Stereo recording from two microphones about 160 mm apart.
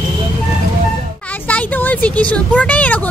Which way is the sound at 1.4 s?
10° left (ahead or behind).